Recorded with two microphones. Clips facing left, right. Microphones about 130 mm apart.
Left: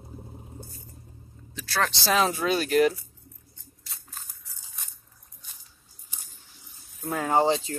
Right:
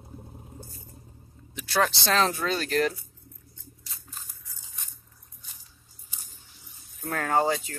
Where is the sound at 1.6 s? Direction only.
20° right (ahead or behind).